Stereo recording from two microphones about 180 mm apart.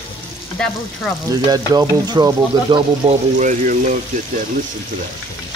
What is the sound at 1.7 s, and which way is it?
Speech, 20° right (ahead or behind).